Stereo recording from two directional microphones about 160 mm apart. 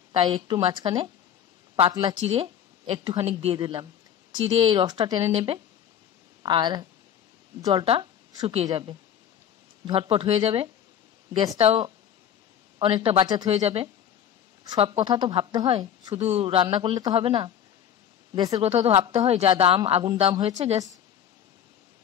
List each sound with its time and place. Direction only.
0.1 s speech: 30° right (ahead or behind)
2.2 s a woman's voice: 40° right (ahead or behind)
9.8 s a woman's voice: 35° right (ahead or behind)
13.5 s a woman's voice: 40° right (ahead or behind)
16.2 s a woman's voice: 40° right (ahead or behind); by 18.6 s 25° right (ahead or behind)
18.6 s a woman's voice: 40° right (ahead or behind)
20.4 s a woman's voice: 45° right (ahead or behind)